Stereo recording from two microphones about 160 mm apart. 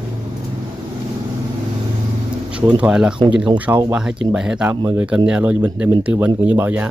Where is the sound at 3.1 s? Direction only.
30° right (ahead or behind).